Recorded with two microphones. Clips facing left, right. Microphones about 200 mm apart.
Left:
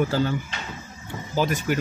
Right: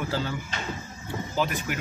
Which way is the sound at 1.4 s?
40° left (ahead or behind).